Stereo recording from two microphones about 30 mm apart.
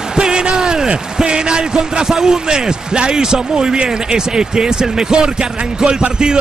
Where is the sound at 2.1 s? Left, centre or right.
Centre.